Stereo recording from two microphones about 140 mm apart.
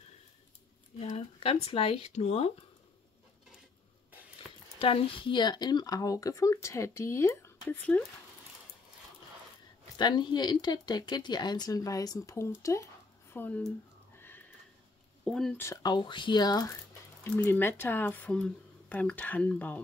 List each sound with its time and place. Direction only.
0.9 s speech: 45° left (ahead or behind)
4.7 s speech: 40° left (ahead or behind); by 8.0 s 15° left (ahead or behind)
9.9 s speech: 30° left (ahead or behind); by 13.6 s 15° left (ahead or behind)
15.2 s speech: 5° left (ahead or behind)
15.5 s speech: 20° left (ahead or behind)
15.8 s speech: 35° left (ahead or behind)
17.2 s speech: 15° left (ahead or behind)